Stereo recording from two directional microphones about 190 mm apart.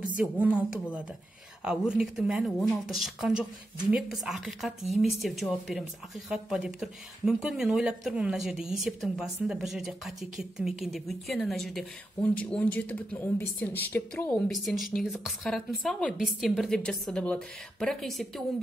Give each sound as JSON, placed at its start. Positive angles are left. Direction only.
{"t": 0.2, "sound": "a woman's voice", "side_deg": -5}